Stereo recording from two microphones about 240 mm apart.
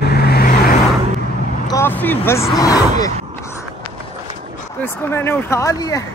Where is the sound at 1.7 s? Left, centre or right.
Centre.